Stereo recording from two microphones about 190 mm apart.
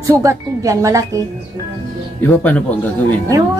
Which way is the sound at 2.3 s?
10° left (ahead or behind).